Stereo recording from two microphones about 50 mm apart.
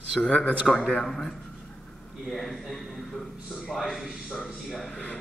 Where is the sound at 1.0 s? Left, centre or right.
Centre.